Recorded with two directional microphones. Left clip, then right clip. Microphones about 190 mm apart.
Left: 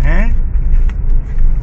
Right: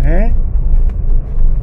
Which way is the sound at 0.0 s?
60° left (ahead or behind).